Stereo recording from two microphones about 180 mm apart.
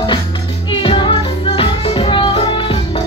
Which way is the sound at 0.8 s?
25° left (ahead or behind).